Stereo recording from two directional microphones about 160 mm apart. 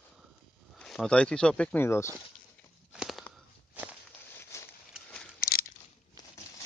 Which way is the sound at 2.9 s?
5° right (ahead or behind).